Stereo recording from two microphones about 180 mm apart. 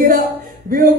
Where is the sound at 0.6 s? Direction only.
55° right (ahead or behind).